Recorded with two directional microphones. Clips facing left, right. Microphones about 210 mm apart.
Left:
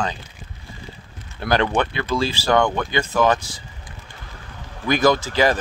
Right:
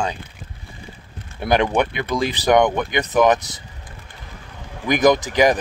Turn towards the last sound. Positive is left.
turn(degrees=-15)  # may be behind; listen again after turning